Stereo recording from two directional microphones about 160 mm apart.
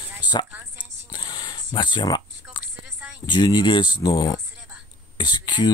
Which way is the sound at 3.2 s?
30° left (ahead or behind).